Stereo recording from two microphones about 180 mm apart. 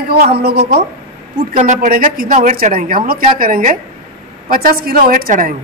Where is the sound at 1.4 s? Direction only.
40° right (ahead or behind).